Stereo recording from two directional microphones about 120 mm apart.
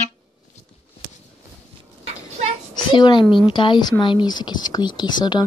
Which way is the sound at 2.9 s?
40° left (ahead or behind).